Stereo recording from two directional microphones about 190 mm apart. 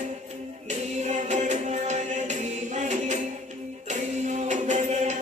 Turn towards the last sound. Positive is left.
turn(degrees=-35)  # may be behind; listen again after turning